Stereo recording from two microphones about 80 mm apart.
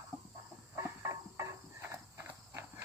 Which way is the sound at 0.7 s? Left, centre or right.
Right.